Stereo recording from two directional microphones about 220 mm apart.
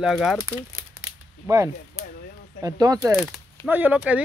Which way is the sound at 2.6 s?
15° right (ahead or behind).